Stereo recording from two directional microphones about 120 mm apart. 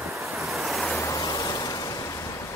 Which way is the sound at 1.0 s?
30° left (ahead or behind).